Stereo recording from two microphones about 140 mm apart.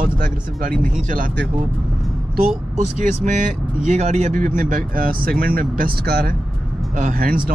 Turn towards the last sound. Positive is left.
turn(degrees=-75)  # may be behind; listen again after turning